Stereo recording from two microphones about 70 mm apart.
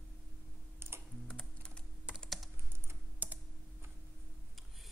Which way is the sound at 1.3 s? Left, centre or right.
Centre.